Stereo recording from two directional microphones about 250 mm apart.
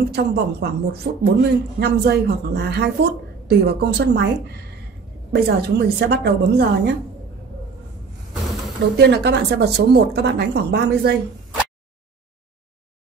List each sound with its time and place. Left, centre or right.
0.1 s a man's voice: right
8.9 s a man's voice: right